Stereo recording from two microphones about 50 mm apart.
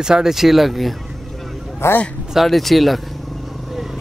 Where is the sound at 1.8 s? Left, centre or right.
Left.